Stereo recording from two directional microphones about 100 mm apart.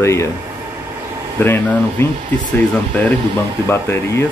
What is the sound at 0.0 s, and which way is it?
Speech, 30° left (ahead or behind).